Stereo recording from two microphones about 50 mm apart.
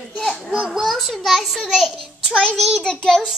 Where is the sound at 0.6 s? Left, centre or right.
Centre.